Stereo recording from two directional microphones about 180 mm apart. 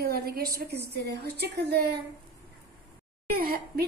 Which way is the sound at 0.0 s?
60° right (ahead or behind).